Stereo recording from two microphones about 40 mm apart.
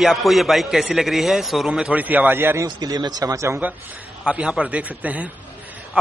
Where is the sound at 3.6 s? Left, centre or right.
Right.